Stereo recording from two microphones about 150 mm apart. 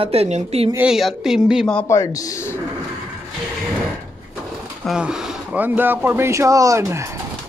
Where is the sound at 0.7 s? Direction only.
5° right (ahead or behind).